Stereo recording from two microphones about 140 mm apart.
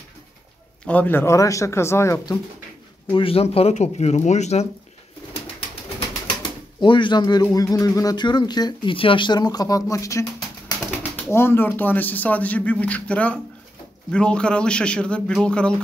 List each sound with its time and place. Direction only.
0.8 s speech: 10° left (ahead or behind)
3.1 s speech: 40° left (ahead or behind)
6.8 s speech: 35° left (ahead or behind)
11.3 s speech: 15° left (ahead or behind)